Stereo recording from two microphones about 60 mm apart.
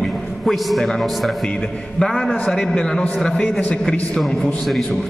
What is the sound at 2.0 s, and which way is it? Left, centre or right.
Mantra, centre.